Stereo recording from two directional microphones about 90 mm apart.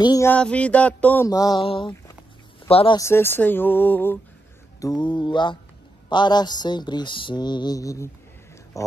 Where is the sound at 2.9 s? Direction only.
30° left (ahead or behind).